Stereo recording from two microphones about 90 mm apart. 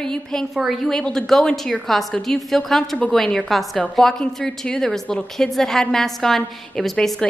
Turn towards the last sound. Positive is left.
turn(degrees=5)  # may be behind; listen again after turning